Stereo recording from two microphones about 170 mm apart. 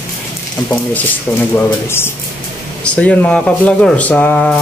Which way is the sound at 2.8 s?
10° left (ahead or behind).